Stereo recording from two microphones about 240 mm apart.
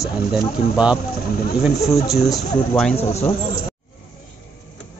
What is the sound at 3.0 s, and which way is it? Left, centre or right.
Speech, left.